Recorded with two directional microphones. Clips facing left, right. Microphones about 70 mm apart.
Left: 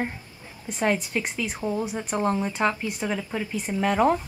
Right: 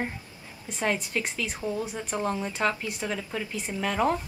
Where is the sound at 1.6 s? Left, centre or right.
Centre.